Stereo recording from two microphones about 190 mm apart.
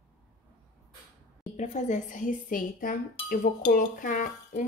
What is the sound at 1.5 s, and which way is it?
A woman's voice, 40° left (ahead or behind).